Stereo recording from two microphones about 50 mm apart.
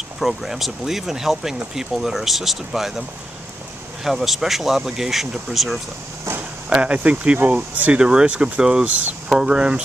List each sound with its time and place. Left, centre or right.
0.2 s speech: centre
4.0 s speech: centre
6.7 s speech: right
8.0 s speech: centre